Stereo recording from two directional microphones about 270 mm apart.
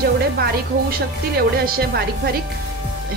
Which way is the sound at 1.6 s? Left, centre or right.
Right.